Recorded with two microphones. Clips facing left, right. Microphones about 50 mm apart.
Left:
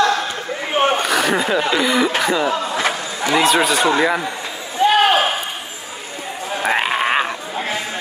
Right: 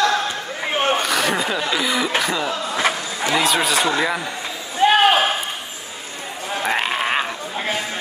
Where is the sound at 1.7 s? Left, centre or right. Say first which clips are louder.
Left 4 dB; centre.